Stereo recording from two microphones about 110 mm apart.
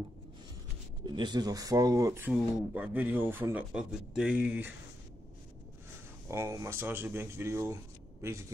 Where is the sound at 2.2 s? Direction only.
15° right (ahead or behind).